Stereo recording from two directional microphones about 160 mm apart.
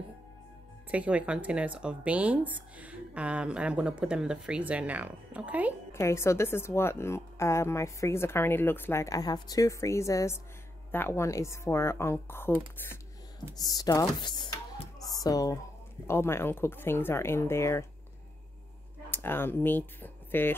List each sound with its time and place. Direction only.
0.9 s speech: 10° right (ahead or behind)
5.9 s a woman's voice: 15° left (ahead or behind)
13.6 s a woman's voice: 25° left (ahead or behind)
19.0 s speech: 15° left (ahead or behind)